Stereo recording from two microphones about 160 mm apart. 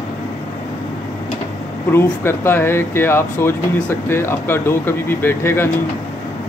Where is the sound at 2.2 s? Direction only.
15° left (ahead or behind).